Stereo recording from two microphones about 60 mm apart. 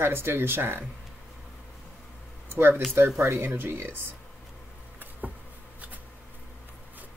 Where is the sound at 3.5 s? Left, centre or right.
Right.